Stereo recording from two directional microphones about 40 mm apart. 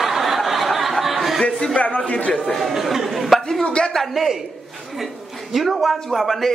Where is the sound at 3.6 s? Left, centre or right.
Left.